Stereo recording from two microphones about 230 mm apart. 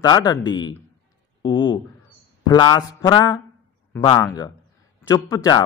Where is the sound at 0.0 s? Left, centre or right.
Centre.